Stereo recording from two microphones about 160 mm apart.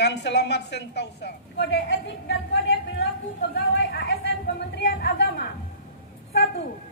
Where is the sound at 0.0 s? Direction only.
90° left.